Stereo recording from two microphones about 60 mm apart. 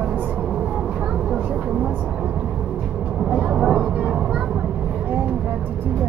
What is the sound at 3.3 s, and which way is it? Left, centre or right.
Vehicle, centre.